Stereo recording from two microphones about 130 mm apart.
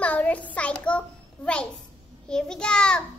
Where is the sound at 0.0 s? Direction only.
10° left (ahead or behind).